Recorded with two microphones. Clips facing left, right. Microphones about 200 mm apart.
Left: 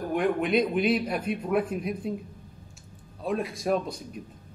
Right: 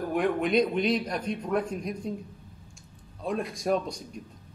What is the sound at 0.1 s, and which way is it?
A man's voice, centre (ahead or behind).